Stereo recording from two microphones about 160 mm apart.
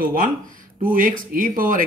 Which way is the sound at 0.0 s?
60° right (ahead or behind).